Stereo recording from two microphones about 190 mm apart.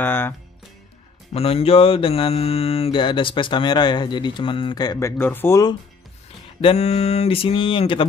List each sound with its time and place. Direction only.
0.0 s music: 10° left (ahead or behind)
1.3 s mantra: 30° left (ahead or behind)
6.6 s mantra: 30° left (ahead or behind)